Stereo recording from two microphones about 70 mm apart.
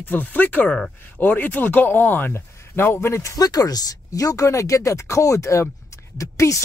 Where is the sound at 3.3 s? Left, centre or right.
Left.